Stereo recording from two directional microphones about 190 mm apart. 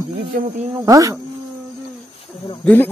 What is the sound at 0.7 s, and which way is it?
Speech, 20° right (ahead or behind).